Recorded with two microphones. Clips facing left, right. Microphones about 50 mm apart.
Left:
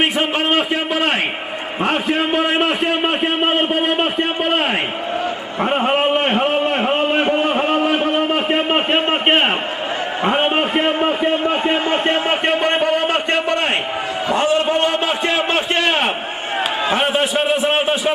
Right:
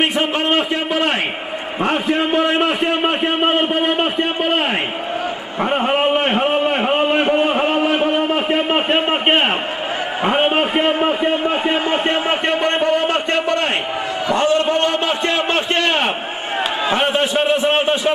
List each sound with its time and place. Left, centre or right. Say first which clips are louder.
0.6 s a sound: even; left
1.8 s a man's voice: even; centre
5.6 s a sound: even; centre
10.2 s a man's voice: right 1 dB; centre
12.8 s a man's voice: even; left
14.3 s a man's voice: right 1 dB; centre